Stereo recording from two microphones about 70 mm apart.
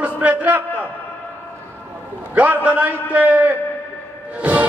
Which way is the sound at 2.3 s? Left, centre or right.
Right.